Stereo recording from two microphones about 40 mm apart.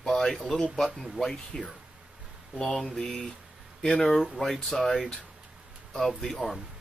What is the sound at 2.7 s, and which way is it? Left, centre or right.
Speech, centre.